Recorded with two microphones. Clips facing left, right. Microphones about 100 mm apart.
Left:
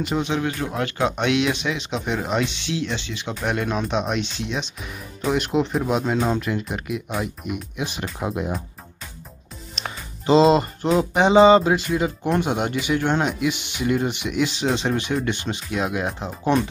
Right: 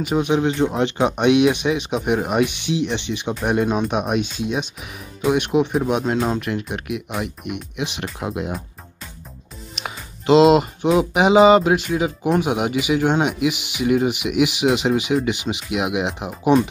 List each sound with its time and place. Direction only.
0.0 s speech: 15° right (ahead or behind)
9.8 s speech: centre (ahead or behind)